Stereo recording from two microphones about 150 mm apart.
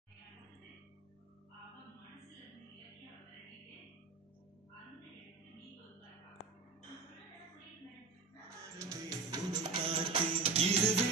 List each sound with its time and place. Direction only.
8.7 s music: 20° right (ahead or behind)
9.6 s music: 35° right (ahead or behind)